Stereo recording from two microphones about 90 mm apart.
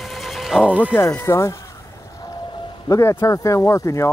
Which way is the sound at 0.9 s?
30° left (ahead or behind).